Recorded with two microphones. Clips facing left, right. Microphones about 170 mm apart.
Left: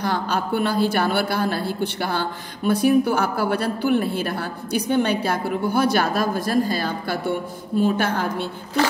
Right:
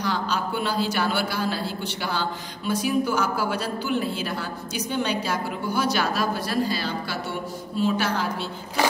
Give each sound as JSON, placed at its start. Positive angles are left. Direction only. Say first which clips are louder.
{"t": 0.0, "sound": "a man's voice", "louder": "left 3 dB", "side_deg": 55}